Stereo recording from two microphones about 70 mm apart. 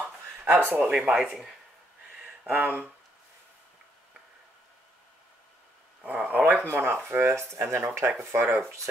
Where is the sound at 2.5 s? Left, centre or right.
Right.